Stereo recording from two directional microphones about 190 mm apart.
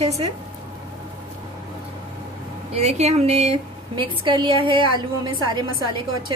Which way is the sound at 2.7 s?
35° right (ahead or behind).